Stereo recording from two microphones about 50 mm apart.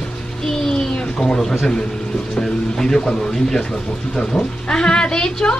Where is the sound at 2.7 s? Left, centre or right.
Centre.